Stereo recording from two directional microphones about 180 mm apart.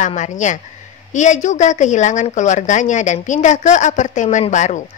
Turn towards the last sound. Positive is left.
turn(degrees=40)  # may be behind; listen again after turning